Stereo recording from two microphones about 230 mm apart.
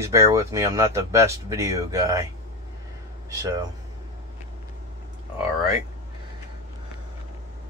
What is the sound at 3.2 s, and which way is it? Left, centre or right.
Speech, centre.